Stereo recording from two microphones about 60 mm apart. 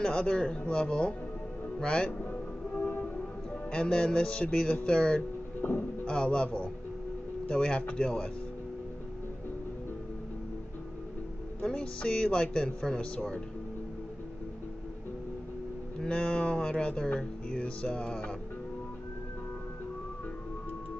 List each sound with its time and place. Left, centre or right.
0.0 s speech: centre
2.7 s music: left
3.7 s speech: centre
5.6 s speech: left
6.0 s speech: centre
11.7 s speech: centre
16.0 s speech: centre